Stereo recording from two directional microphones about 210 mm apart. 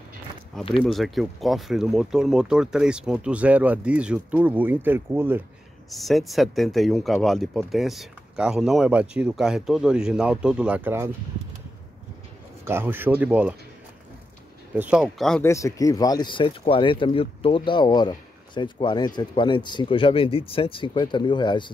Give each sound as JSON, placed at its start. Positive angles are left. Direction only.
{"t": 0.8, "sound": "speech", "side_deg": 0}
{"t": 5.9, "sound": "speech", "side_deg": 0}
{"t": 12.6, "sound": "speech", "side_deg": -10}
{"t": 14.7, "sound": "speech", "side_deg": -5}
{"t": 15.4, "sound": "speech", "side_deg": 15}